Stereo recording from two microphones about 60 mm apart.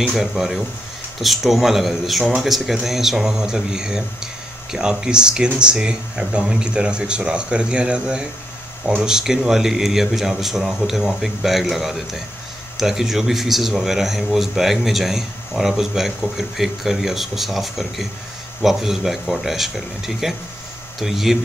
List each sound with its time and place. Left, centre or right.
0.4 s speech: centre